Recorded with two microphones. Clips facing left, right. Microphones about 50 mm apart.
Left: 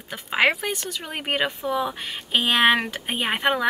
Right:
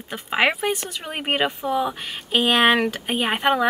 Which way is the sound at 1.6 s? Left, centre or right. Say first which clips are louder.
Right 2 dB; centre.